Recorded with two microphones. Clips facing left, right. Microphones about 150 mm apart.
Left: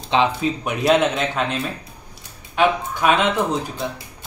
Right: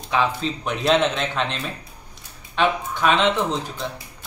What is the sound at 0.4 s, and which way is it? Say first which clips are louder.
Speech: left 3 dB; 10° left (ahead or behind).